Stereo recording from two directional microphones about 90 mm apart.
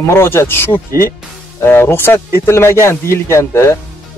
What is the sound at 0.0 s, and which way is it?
Speech, 30° left (ahead or behind).